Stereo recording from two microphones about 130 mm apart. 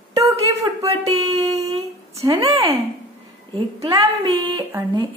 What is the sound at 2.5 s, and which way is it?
Speech, 45° right (ahead or behind).